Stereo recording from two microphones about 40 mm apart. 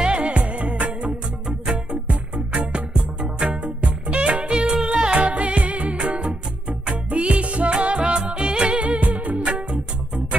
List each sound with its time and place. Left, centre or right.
0.0 s music: right
5.2 s music: right